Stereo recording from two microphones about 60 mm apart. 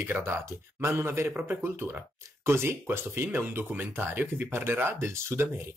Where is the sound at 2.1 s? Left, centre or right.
Right.